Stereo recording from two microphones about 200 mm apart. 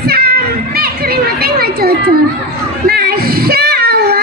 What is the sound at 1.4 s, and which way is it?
Children playing, 50° right (ahead or behind).